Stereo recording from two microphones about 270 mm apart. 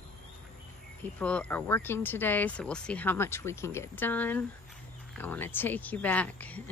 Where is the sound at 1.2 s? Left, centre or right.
Centre.